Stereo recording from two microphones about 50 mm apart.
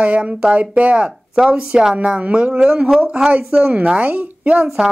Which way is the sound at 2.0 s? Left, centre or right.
Right.